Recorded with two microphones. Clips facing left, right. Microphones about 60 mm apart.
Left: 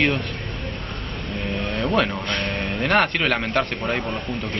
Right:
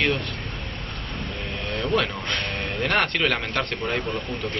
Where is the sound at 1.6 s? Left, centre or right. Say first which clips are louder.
Left 2 dB; centre.